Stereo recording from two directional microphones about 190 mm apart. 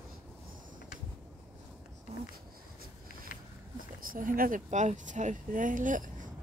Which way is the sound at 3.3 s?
50° left (ahead or behind).